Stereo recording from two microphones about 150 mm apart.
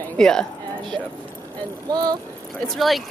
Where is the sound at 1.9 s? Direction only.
30° right (ahead or behind).